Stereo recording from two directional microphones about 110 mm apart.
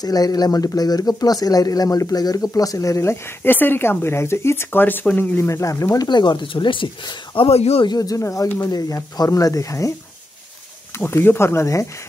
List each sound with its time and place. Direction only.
0.0 s speech: 35° left (ahead or behind)
6.0 s speech: 45° left (ahead or behind); by 7.8 s 65° left (ahead or behind)
7.8 s speech: 35° left (ahead or behind)